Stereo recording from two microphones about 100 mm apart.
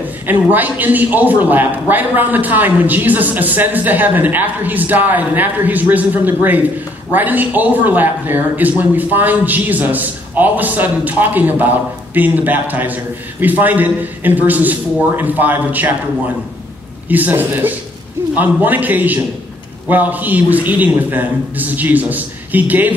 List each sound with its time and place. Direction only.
0.3 s speech: 15° right (ahead or behind)
17.1 s speech: 15° right (ahead or behind)